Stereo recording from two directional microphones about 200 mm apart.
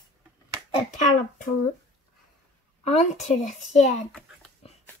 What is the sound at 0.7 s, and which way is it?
Speech, 40° left (ahead or behind).